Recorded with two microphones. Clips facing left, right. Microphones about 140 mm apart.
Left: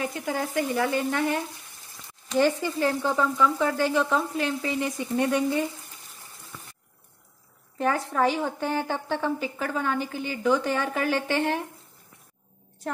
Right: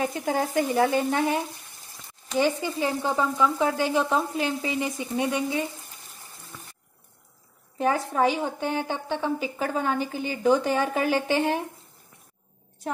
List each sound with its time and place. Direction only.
0.0 s frying: 30° right (ahead or behind)
2.3 s speech: 10° right (ahead or behind)
7.7 s speech: 15° right (ahead or behind)